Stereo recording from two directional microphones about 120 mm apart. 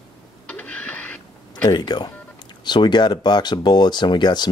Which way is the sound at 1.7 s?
40° left (ahead or behind).